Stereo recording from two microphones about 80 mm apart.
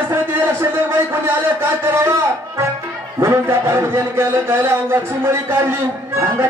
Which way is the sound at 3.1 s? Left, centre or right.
Right.